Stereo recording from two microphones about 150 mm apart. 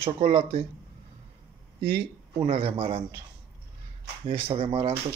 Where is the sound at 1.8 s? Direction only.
90° right.